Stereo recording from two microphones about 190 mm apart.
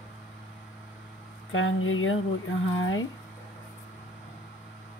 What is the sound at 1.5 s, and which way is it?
Speech, 90° left.